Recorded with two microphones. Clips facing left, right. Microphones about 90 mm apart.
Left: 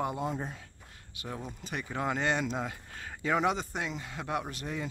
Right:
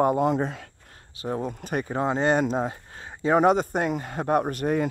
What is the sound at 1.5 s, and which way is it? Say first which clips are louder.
Speech: right 10 dB; 55° right (ahead or behind).